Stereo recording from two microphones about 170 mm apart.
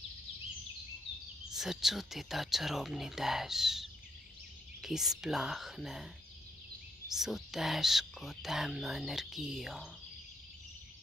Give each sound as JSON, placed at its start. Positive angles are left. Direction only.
{"t": 1.5, "sound": "speech", "side_deg": 0}
{"t": 7.1, "sound": "speech", "side_deg": 0}